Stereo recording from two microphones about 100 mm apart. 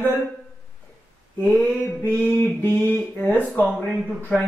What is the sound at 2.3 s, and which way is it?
Speech, 20° left (ahead or behind).